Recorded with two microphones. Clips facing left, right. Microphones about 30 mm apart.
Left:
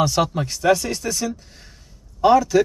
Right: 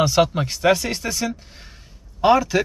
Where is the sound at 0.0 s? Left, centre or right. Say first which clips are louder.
Right 2 dB; right.